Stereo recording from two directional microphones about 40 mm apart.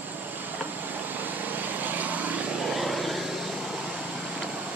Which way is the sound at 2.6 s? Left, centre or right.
Centre.